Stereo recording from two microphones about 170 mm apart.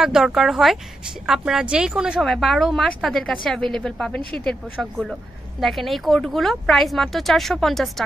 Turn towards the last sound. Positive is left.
turn(degrees=0)  # may be behind; listen again after turning